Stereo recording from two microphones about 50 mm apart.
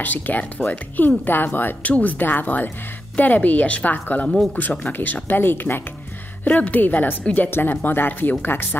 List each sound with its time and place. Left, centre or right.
0.0 s speech: left
1.8 s speech: left
6.4 s speech: left